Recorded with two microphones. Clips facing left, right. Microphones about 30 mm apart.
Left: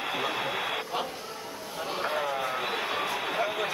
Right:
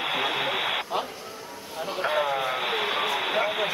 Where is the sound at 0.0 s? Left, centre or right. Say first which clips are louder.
Right 4 dB; right.